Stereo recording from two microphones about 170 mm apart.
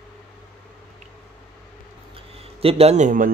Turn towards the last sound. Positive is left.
turn(degrees=-50)  # may be behind; listen again after turning